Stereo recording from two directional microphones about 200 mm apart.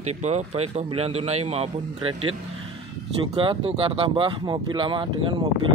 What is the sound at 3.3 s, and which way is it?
Speech, 25° right (ahead or behind).